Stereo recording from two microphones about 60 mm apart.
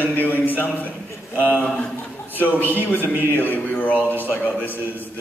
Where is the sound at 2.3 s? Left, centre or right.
Left.